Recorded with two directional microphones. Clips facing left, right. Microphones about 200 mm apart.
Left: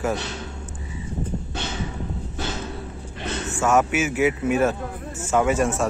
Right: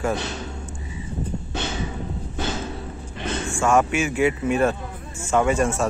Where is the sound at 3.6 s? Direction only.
5° left (ahead or behind).